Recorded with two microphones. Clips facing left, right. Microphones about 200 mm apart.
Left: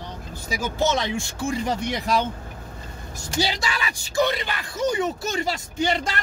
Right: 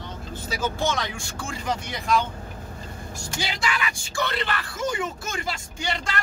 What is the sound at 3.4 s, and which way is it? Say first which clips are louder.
Speech: even; 35° left (ahead or behind).